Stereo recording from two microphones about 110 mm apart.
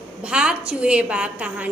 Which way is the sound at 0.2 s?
10° right (ahead or behind).